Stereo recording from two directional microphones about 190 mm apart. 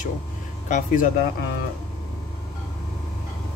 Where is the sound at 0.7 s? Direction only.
45° left (ahead or behind).